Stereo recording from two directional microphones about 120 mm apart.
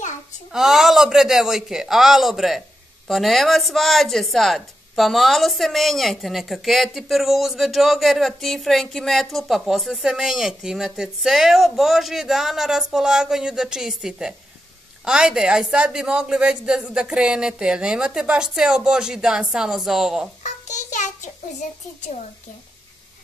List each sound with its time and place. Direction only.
0.5 s a man's voice: 5° right (ahead or behind)
20.4 s child singing: 80° left